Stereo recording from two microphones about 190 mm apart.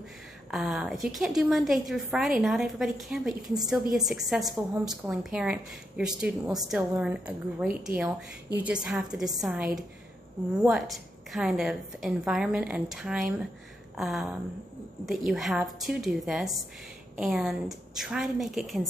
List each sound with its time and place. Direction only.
0.5 s a woman's voice: 5° right (ahead or behind)